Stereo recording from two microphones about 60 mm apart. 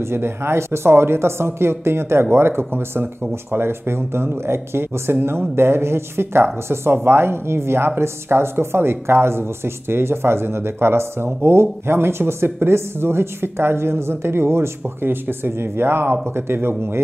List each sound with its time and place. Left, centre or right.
0.0 s speech: right